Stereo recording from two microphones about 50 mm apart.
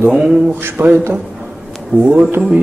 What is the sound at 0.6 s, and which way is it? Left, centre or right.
Speech, right.